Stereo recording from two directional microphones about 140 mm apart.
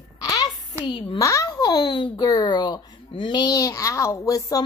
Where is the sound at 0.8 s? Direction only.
35° left (ahead or behind).